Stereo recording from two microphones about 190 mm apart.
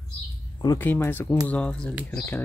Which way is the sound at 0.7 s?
10° left (ahead or behind).